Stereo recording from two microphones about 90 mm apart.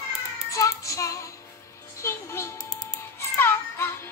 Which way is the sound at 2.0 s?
30° left (ahead or behind).